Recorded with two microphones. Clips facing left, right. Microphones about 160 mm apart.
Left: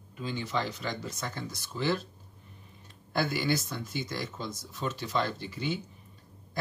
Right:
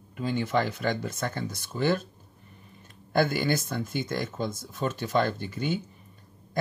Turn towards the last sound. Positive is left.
turn(degrees=-50)  # may be behind; listen again after turning